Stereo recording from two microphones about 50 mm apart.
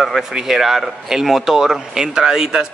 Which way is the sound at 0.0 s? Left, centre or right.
Centre.